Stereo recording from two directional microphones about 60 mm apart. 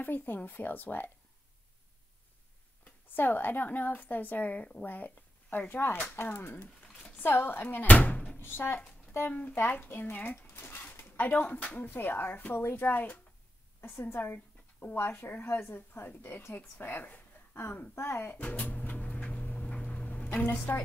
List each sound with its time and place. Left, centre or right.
0.0 s a woman's voice: left
2.8 s a woman's voice: left
5.7 s a woman's voice: left
8.4 s speech: left
9.3 s speech: left
11.9 s a woman's voice: left
13.7 s a woman's voice: left
18.4 s music: left
19.9 s a sound: left
20.4 s a woman's voice: left